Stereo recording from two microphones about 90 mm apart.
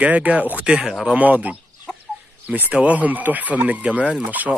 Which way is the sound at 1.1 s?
15° right (ahead or behind).